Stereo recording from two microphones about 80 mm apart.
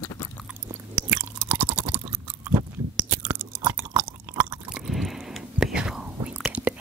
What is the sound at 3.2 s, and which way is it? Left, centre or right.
Chewing, right.